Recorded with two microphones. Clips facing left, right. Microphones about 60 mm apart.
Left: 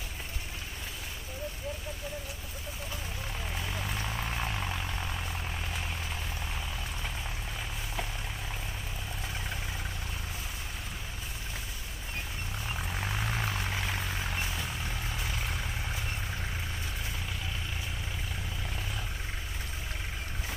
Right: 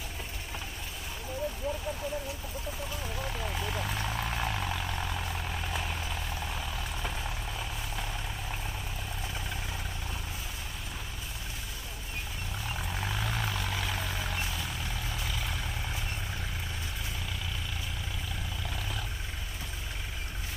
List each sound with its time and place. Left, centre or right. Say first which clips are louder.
3.8 s vehicle: right 2 dB; centre
13.0 s vehicle: even; left
13.9 s vehicle: even; centre